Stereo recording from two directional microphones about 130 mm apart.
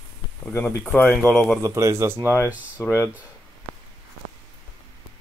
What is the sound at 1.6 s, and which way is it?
Speech, 25° right (ahead or behind).